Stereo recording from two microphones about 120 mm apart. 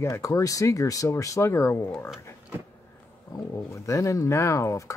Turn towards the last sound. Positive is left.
turn(degrees=25)  # may be behind; listen again after turning